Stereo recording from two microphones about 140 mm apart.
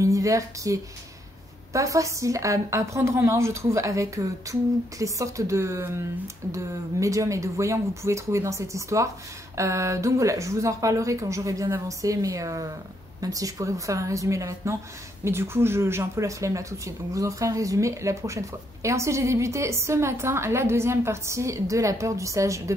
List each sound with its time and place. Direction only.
0.0 s a woman's voice: 25° right (ahead or behind)